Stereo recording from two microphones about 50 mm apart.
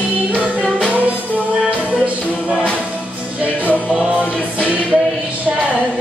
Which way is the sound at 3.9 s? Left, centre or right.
Right.